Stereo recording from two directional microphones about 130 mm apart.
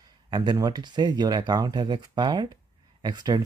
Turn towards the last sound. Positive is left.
turn(degrees=-35)  # may be behind; listen again after turning